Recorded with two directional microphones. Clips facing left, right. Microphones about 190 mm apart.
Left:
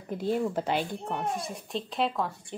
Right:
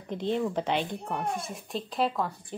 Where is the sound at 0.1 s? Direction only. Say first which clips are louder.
Even; 5° left (ahead or behind).